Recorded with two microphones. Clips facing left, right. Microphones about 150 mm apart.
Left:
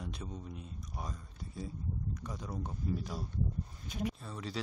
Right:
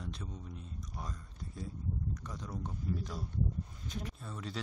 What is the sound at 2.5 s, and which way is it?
Speech, 20° left (ahead or behind).